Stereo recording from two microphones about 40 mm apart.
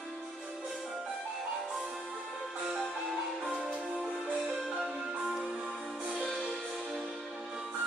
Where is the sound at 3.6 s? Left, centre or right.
Right.